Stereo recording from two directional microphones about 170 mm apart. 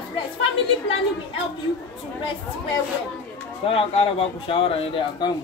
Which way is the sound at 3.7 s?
35° left (ahead or behind).